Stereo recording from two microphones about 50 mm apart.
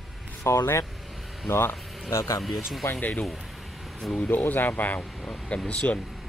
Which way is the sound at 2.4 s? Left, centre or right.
Centre.